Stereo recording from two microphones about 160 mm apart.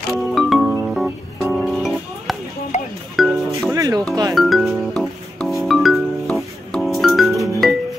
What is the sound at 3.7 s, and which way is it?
Music, 20° right (ahead or behind).